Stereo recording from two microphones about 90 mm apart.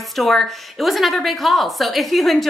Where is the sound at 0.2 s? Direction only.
Centre (ahead or behind).